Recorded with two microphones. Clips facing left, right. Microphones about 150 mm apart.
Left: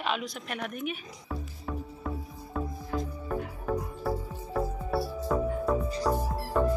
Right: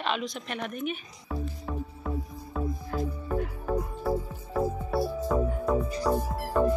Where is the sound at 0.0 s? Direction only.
5° left (ahead or behind).